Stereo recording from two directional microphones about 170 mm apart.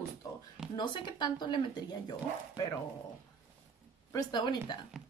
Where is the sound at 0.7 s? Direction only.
25° left (ahead or behind).